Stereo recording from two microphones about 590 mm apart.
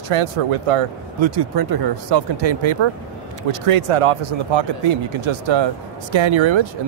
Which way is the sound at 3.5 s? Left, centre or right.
Right.